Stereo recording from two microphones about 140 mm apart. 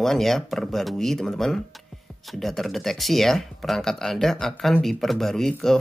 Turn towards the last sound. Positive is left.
turn(degrees=5)  # may be behind; listen again after turning